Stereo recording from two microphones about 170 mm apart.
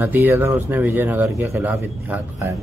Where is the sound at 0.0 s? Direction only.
10° right (ahead or behind).